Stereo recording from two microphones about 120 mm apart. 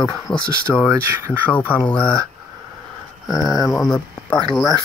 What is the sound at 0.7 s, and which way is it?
Speech, 20° right (ahead or behind).